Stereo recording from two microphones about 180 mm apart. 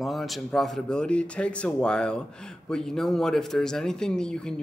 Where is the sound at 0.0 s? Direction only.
Centre (ahead or behind).